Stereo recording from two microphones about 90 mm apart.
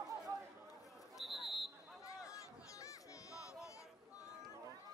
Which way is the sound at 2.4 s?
35° left (ahead or behind).